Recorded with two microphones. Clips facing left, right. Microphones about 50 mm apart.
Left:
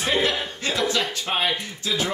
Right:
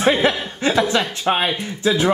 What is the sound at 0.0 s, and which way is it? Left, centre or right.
Chuckle, right.